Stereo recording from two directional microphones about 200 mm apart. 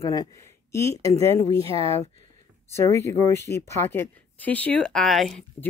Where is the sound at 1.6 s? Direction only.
30° right (ahead or behind).